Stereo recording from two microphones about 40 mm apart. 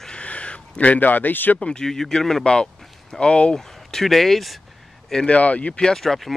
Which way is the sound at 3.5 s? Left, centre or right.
Centre.